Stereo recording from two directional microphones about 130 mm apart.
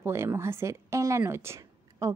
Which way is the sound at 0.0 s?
20° right (ahead or behind).